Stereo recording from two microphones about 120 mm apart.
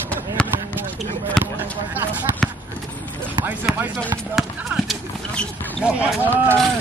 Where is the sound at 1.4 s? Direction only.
5° left (ahead or behind).